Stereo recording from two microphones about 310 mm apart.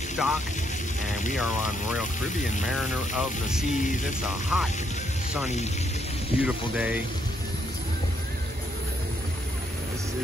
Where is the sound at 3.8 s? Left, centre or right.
Left.